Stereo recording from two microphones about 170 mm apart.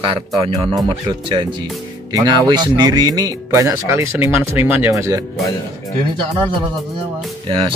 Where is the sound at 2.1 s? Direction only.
25° right (ahead or behind).